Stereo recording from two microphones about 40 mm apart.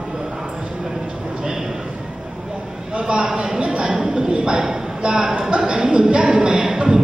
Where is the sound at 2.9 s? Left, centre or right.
Right.